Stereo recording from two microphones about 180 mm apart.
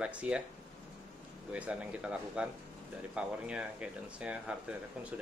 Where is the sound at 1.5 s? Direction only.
5° right (ahead or behind).